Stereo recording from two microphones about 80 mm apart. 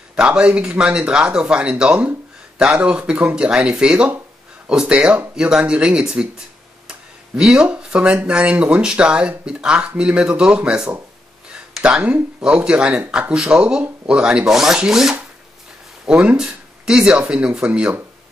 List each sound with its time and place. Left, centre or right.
0.1 s speech: centre
6.9 s tick-tock: centre
7.6 s speech: centre
12.4 s speech: centre
16.3 s speech: centre